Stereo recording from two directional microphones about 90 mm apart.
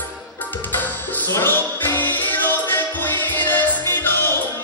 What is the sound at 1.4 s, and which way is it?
Music, 25° left (ahead or behind).